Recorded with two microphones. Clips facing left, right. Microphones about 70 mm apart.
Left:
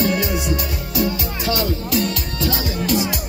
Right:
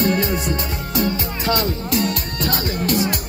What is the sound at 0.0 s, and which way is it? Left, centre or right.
Music, right.